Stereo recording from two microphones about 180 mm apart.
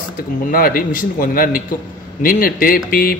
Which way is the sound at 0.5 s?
55° left (ahead or behind).